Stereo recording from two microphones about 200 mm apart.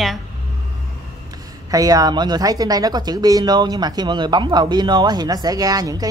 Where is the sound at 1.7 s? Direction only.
20° right (ahead or behind).